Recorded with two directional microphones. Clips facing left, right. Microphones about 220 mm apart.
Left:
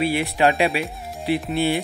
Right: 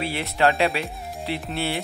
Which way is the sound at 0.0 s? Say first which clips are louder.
Left 3 dB; 15° left (ahead or behind).